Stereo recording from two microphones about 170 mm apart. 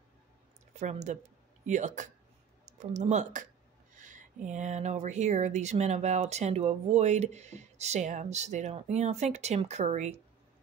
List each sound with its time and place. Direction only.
0.7 s speech: 45° right (ahead or behind)